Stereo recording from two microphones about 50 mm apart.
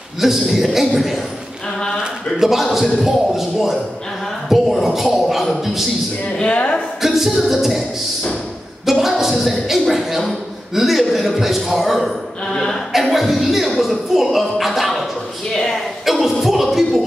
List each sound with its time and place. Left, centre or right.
0.2 s a woman's voice: centre
2.4 s a woman's voice: centre
6.3 s speech: left
7.0 s a woman's voice: centre
8.8 s a woman's voice: centre
12.5 s speech: centre
12.9 s a woman's voice: centre
15.5 s speech: centre
16.1 s a woman's voice: centre